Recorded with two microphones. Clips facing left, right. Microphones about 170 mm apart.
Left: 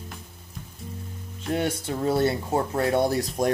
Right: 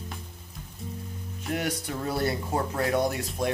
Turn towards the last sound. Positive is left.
turn(degrees=35)  # may be behind; listen again after turning